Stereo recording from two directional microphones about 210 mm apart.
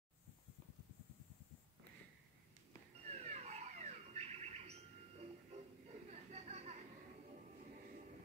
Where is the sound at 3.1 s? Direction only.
30° right (ahead or behind).